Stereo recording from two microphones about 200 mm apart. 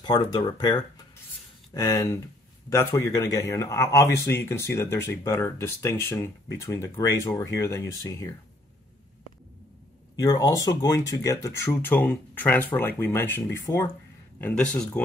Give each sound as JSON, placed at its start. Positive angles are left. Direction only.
{"t": 0.0, "sound": "speech", "side_deg": 20}
{"t": 10.1, "sound": "speech", "side_deg": 15}